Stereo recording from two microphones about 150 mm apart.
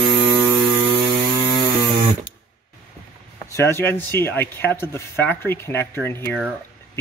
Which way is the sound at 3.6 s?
15° left (ahead or behind).